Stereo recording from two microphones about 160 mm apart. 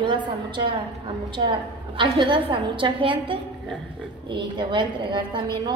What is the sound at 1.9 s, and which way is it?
A woman's voice, 30° right (ahead or behind).